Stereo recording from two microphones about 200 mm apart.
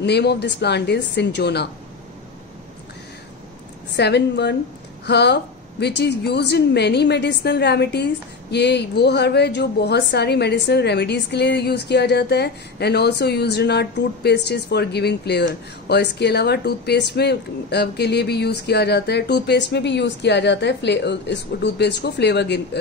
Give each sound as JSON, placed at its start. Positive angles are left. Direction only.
{"t": 0.0, "sound": "a woman's voice", "side_deg": 55}
{"t": 3.9, "sound": "a woman's voice", "side_deg": 55}